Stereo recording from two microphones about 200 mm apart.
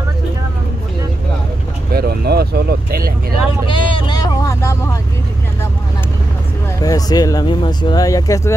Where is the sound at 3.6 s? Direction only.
25° left (ahead or behind).